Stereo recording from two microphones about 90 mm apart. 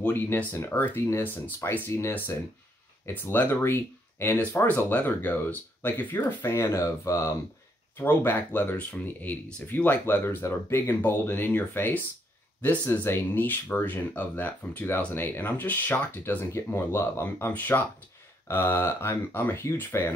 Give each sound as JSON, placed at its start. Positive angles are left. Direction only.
{"t": 0.0, "sound": "speech", "side_deg": 20}
{"t": 8.0, "sound": "speech", "side_deg": 25}